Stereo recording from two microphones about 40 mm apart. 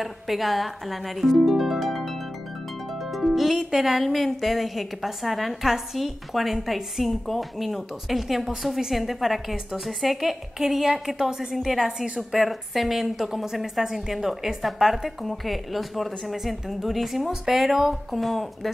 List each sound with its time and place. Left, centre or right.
0.0 s music: centre
1.5 s harp: centre
2.9 s music: centre
13.8 s a woman's voice: centre
14.7 s music: centre